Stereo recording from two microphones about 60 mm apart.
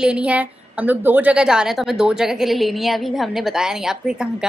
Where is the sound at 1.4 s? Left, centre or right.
Centre.